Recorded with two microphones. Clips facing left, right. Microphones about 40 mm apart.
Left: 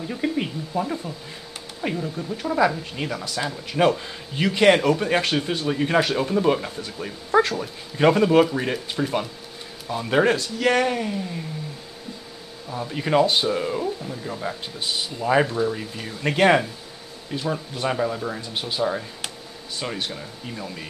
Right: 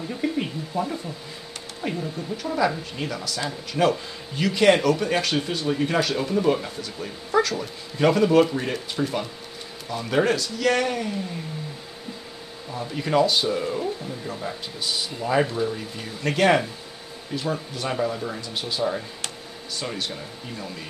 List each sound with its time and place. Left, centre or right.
0.1 s speech: centre
0.7 s speech: centre
1.8 s speech: centre
12.7 s speech: centre